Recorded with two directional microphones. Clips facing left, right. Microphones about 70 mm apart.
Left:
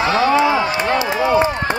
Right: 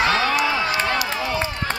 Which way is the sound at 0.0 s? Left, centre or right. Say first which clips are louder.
Left 5 dB; left.